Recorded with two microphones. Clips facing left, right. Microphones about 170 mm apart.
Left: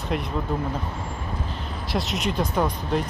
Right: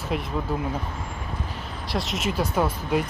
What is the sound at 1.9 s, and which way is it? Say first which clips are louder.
Speech: left 1 dB; centre (ahead or behind).